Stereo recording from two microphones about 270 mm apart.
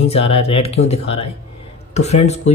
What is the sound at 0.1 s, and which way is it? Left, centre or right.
A man's voice, left.